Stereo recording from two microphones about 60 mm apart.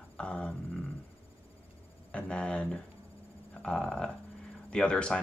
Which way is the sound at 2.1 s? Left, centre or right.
Centre.